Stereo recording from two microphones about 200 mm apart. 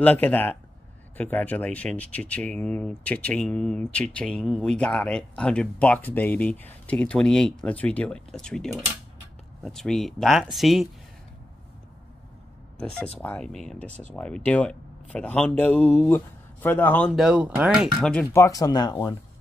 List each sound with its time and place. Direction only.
0.0 s speech: 10° left (ahead or behind)
13.2 s speech: 5° left (ahead or behind)
18.3 s speech: 15° left (ahead or behind)